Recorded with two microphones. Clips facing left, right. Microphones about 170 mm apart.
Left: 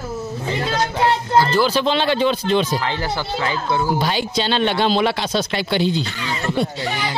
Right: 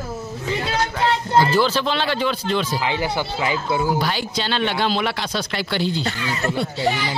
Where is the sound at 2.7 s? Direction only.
15° right (ahead or behind).